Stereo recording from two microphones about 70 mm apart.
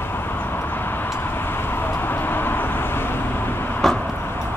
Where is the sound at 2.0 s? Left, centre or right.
Left.